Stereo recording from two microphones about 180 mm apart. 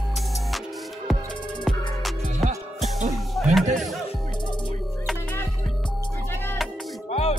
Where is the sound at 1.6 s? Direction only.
Centre (ahead or behind).